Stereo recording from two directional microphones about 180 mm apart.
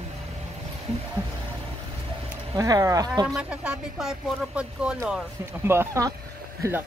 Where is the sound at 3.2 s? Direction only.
5° right (ahead or behind).